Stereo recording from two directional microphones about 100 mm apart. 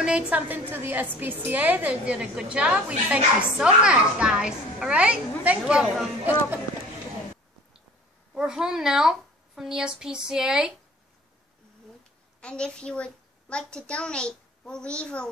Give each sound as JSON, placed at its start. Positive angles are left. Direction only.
{"t": 0.0, "sound": "a woman's voice", "side_deg": -10}
{"t": 8.4, "sound": "speech", "side_deg": -5}
{"t": 12.4, "sound": "a child's voice", "side_deg": 10}